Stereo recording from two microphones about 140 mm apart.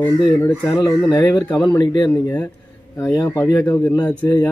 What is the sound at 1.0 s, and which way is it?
Speech, 30° left (ahead or behind).